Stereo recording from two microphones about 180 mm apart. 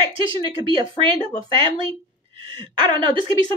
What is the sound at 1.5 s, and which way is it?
Speech, 30° right (ahead or behind).